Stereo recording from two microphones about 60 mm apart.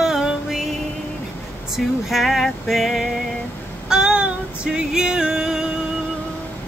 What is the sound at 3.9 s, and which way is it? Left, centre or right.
Female singing, centre.